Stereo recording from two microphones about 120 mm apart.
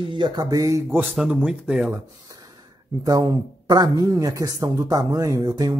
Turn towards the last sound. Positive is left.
turn(degrees=-30)  # may be behind; listen again after turning